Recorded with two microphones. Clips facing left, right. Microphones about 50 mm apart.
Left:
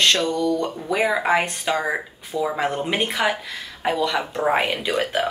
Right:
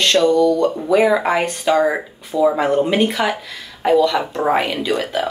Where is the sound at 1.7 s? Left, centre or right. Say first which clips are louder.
Right 7 dB; centre.